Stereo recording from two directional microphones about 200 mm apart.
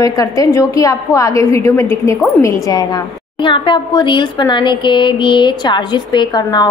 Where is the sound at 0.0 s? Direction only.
15° left (ahead or behind).